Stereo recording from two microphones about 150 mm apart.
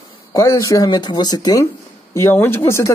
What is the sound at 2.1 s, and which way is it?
Speech, 15° left (ahead or behind).